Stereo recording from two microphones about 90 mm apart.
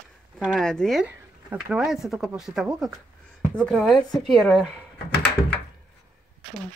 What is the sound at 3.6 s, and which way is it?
Speech, 5° left (ahead or behind).